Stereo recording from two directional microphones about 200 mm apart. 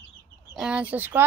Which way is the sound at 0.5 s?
5° right (ahead or behind).